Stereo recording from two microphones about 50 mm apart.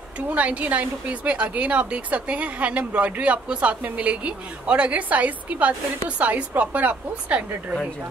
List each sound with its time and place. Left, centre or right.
0.3 s a woman's voice: right